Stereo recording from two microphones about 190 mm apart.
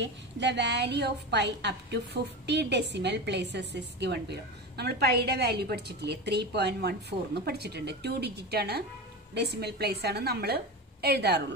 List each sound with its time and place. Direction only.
0.0 s a woman's voice: 65° right (ahead or behind)